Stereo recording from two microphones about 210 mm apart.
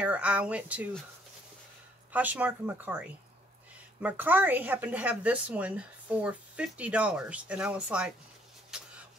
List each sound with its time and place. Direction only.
0.0 s speech: 5° right (ahead or behind)
2.1 s speech: 5° right (ahead or behind)
8.7 s a sound: 5° right (ahead or behind)